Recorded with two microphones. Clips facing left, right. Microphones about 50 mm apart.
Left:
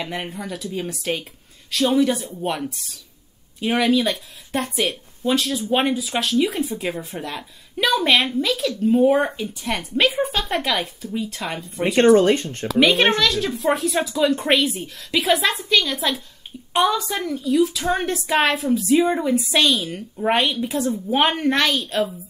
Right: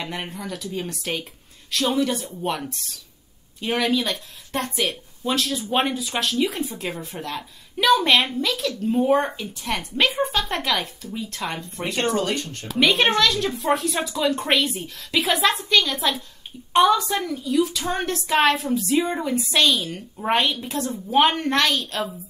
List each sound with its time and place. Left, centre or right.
0.0 s speech: centre
11.8 s speech: left
12.7 s speech: centre